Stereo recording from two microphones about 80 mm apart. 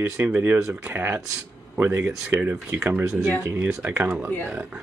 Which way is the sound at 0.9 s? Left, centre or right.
Right.